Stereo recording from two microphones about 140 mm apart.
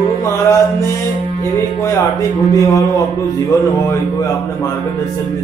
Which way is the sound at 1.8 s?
25° left (ahead or behind).